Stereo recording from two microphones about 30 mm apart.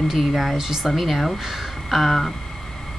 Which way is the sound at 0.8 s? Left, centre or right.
Centre.